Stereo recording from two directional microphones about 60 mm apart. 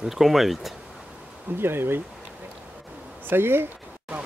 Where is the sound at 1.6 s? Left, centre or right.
Right.